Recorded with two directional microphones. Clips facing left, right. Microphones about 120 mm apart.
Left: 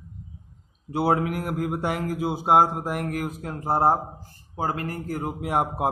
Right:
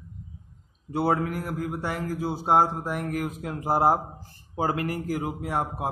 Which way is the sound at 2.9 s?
55° left (ahead or behind).